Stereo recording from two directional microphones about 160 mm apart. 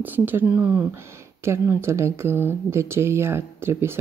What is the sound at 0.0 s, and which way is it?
Speech, 10° right (ahead or behind).